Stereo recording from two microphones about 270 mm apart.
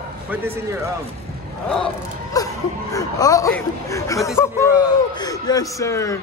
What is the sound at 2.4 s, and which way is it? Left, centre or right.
A man's voice, centre.